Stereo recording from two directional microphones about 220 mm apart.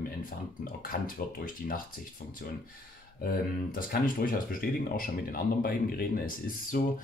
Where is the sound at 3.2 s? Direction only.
40° left (ahead or behind).